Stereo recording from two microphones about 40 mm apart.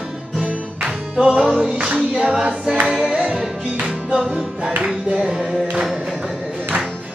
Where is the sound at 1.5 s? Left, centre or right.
Right.